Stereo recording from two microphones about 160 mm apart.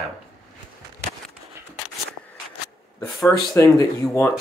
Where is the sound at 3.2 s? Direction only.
20° left (ahead or behind).